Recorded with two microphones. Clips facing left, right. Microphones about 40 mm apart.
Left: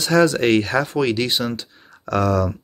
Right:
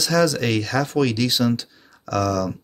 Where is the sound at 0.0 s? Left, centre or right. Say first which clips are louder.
Left 3 dB; left.